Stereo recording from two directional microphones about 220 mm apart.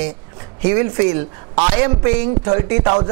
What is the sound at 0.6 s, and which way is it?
A man's voice, 15° right (ahead or behind).